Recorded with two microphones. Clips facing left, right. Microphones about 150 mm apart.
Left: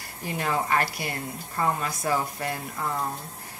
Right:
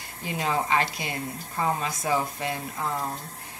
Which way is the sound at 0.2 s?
20° right (ahead or behind).